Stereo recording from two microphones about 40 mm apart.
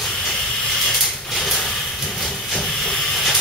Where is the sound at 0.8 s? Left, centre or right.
Centre.